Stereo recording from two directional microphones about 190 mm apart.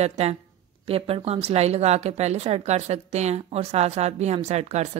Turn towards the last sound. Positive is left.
turn(degrees=-35)  # may be behind; listen again after turning